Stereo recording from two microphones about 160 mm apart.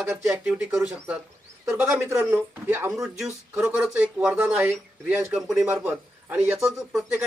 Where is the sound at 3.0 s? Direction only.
5° right (ahead or behind).